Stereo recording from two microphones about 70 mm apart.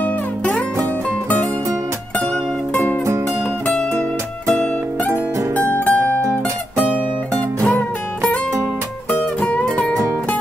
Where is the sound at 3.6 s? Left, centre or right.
Left.